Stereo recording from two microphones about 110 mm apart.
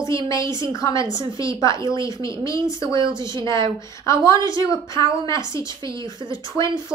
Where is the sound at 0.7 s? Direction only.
30° left (ahead or behind).